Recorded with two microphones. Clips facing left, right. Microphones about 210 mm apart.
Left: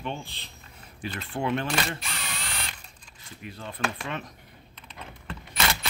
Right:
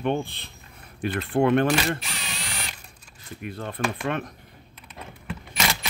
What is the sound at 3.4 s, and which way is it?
Speech, 55° right (ahead or behind).